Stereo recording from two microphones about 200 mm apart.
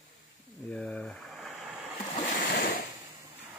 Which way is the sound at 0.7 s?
5° left (ahead or behind).